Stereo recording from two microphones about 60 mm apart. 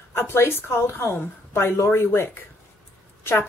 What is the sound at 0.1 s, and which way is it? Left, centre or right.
Speech, left.